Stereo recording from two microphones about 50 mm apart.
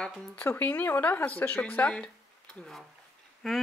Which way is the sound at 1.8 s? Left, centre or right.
Left.